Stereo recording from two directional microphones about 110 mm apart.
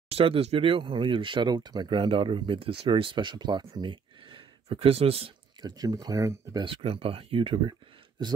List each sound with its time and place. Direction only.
0.1 s speech: 60° right (ahead or behind)
4.6 s speech: 65° right (ahead or behind)
5.6 s speech: 35° right (ahead or behind)
6.6 s speech: 55° right (ahead or behind)